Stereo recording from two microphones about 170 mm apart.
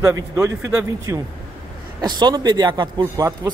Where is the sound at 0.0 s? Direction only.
15° right (ahead or behind).